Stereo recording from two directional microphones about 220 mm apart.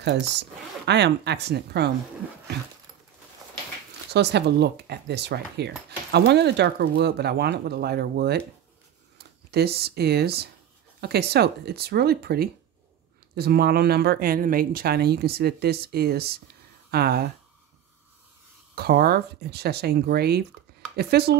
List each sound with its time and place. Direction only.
0.0 s speech: 50° right (ahead or behind)
4.1 s speech: 50° right (ahead or behind)
9.5 s speech: 45° right (ahead or behind)
18.8 s speech: 45° right (ahead or behind)